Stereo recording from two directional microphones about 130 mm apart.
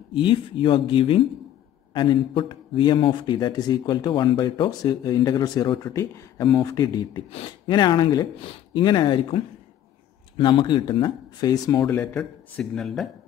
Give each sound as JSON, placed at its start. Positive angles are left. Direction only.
{"t": 0.1, "sound": "speech", "side_deg": 40}
{"t": 12.0, "sound": "speech", "side_deg": 15}
{"t": 12.5, "sound": "speech", "side_deg": 5}